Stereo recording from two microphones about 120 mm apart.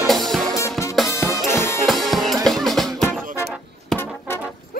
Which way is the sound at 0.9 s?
Centre (ahead or behind).